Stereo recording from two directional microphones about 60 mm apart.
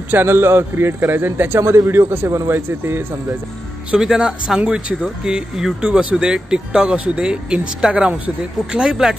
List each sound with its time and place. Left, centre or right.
0.1 s a man's voice: right
4.0 s speech: centre